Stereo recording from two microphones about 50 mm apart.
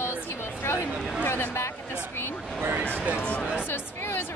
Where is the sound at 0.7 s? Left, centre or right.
Left.